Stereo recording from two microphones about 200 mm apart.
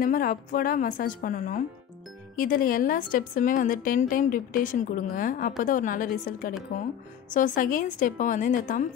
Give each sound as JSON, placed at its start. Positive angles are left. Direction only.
{"t": 0.0, "sound": "a woman's voice", "side_deg": 45}